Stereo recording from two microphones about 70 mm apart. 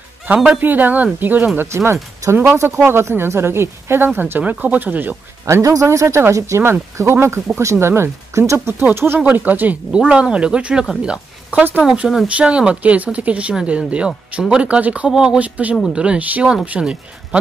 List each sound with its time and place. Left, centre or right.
0.6 s speech: right
1.6 s speech: right
5.5 s speech: right
9.9 s speech: centre
15.4 s speech: right